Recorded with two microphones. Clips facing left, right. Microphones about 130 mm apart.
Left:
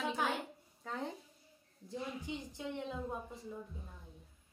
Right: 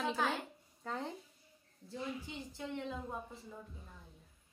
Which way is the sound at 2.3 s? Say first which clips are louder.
Left 4 dB; 20° left (ahead or behind).